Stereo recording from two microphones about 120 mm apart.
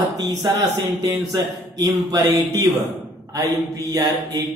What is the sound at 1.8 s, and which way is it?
Speech, 30° right (ahead or behind).